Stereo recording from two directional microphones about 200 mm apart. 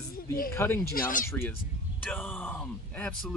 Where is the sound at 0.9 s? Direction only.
45° left (ahead or behind).